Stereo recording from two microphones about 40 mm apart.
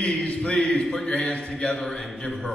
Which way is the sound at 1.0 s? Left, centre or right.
Left.